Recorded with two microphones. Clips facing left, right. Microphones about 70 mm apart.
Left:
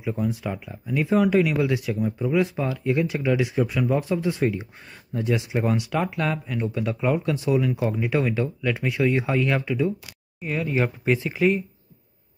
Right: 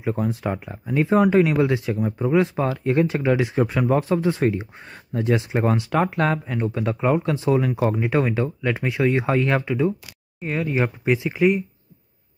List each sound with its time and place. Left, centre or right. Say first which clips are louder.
0.0 s speech: right 3 dB; right; by 11.6 s centre